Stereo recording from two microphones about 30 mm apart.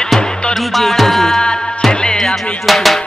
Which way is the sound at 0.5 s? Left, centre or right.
Centre.